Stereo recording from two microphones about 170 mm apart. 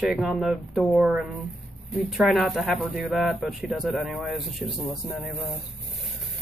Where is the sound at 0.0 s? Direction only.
Centre (ahead or behind).